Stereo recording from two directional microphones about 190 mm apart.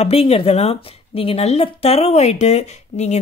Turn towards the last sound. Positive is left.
turn(degrees=35)  # may be behind; listen again after turning